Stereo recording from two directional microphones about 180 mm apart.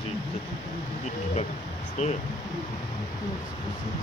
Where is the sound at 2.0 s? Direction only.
40° left (ahead or behind).